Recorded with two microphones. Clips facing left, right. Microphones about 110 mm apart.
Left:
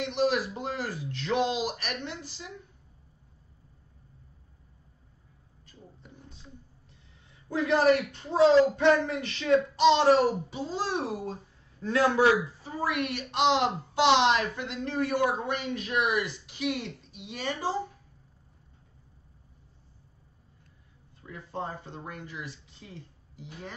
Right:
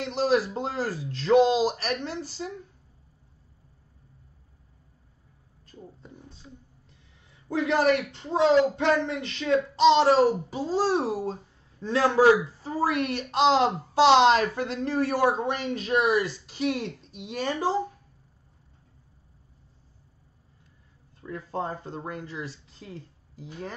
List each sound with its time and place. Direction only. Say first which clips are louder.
0.0 s speech: right 3 dB; 35° right (ahead or behind)
7.4 s a woman's voice: even; 25° right (ahead or behind); by 17.6 s 45° right (ahead or behind)
21.5 s speech: right 4 dB; 40° right (ahead or behind)